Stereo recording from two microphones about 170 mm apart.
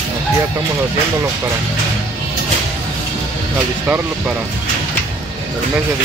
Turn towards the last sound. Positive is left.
turn(degrees=-10)  # may be behind; listen again after turning